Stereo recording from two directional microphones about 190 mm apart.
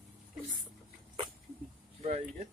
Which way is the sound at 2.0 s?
35° right (ahead or behind).